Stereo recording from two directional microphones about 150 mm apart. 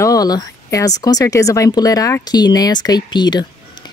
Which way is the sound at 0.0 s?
25° left (ahead or behind).